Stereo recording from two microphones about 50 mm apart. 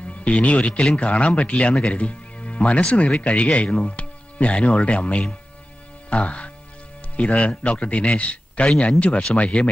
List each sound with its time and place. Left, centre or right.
0.0 s speech: left